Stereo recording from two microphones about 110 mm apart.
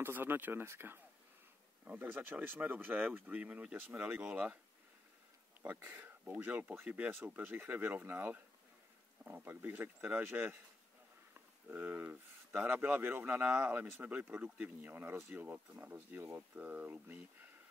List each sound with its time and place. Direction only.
0.0 s speech: 20° right (ahead or behind)
5.6 s speech: 20° right (ahead or behind)